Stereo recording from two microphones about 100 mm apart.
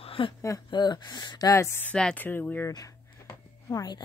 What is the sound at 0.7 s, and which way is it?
Speech, 45° left (ahead or behind).